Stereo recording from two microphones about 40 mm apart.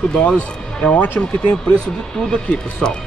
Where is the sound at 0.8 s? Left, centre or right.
Left.